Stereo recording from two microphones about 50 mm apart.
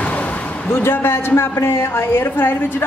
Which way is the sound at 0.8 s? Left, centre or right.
Left.